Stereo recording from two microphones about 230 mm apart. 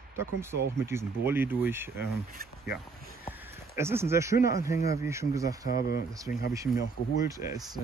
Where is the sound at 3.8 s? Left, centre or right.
Centre.